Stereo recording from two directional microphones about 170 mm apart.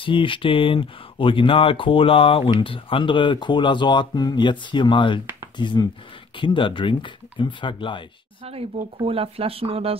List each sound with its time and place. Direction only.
0.0 s speech: 30° left (ahead or behind)
8.5 s speech: 35° right (ahead or behind)